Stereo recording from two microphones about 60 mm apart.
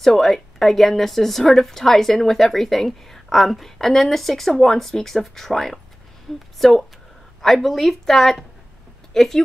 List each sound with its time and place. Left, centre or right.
0.0 s a woman's voice: centre